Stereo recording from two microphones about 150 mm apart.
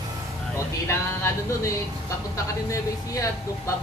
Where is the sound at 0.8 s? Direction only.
20° left (ahead or behind).